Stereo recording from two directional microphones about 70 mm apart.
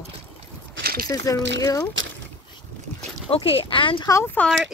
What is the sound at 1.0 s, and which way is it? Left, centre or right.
Speech, left.